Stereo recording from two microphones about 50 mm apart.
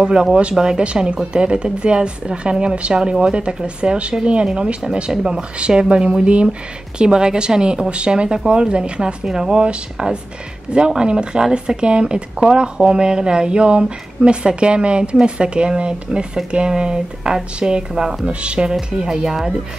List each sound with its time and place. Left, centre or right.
0.0 s speech: centre